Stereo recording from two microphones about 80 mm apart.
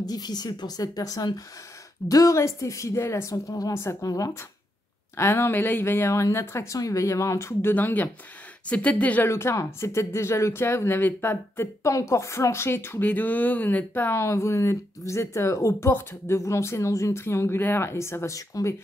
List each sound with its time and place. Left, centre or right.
0.0 s speech: left
3.7 s speech: left
5.1 s speech: left
7.7 s speech: left
9.3 s speech: left
13.0 s speech: left